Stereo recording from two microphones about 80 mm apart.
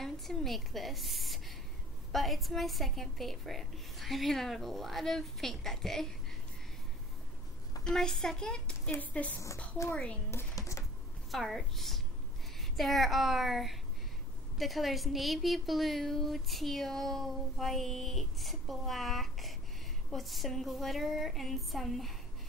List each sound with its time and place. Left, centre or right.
0.0 s a woman's voice: centre
7.8 s a woman's voice: centre
11.3 s a woman's voice: centre